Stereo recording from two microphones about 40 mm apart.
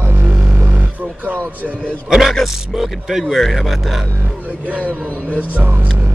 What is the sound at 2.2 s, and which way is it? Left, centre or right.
Speech, centre.